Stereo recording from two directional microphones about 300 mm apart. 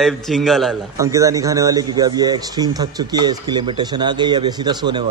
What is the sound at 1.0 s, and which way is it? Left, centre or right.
A man's voice, centre.